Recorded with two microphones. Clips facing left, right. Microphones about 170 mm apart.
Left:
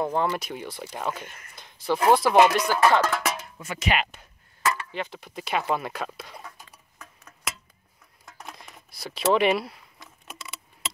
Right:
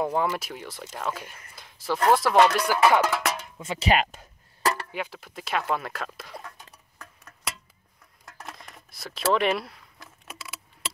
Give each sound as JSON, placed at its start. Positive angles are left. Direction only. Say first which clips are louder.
{"t": 0.0, "sound": "speech", "louder": "even", "side_deg": -10}
{"t": 0.3, "sound": "speech", "louder": "left 2 dB", "side_deg": 0}
{"t": 2.7, "sound": "speech", "louder": "even", "side_deg": -10}
{"t": 3.2, "sound": "music", "louder": "even", "side_deg": 5}
{"t": 3.5, "sound": "speech", "louder": "right 2 dB", "side_deg": -25}
{"t": 3.9, "sound": "a sound", "louder": "right 4 dB", "side_deg": -40}
{"t": 4.9, "sound": "speech", "louder": "left 1 dB", "side_deg": -5}
{"t": 8.3, "sound": "a sound", "louder": "even", "side_deg": 0}